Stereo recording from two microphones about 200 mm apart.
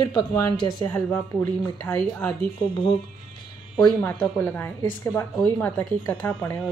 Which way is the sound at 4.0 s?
10° left (ahead or behind).